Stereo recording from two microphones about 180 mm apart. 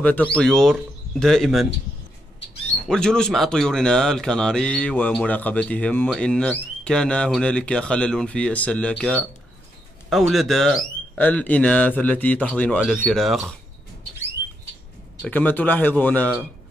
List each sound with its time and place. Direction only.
0.0 s speech: 10° left (ahead or behind)
2.9 s speech: 5° left (ahead or behind)
15.2 s speech: 10° left (ahead or behind)